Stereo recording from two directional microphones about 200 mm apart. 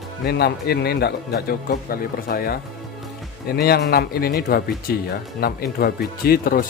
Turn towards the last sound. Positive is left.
turn(degrees=45)  # may be behind; listen again after turning